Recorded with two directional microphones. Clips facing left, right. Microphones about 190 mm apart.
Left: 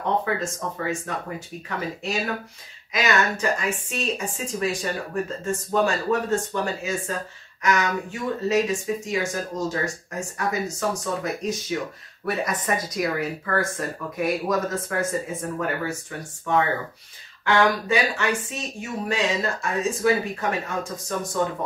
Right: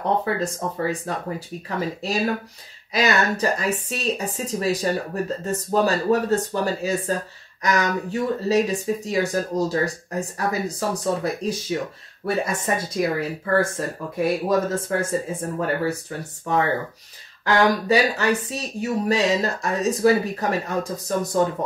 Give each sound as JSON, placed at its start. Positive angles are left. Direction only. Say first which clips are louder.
{"t": 0.2, "sound": "speech", "louder": "right 2 dB", "side_deg": -35}